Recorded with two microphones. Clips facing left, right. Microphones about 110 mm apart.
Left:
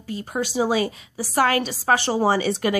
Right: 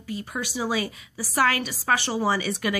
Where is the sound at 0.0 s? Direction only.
30° left (ahead or behind).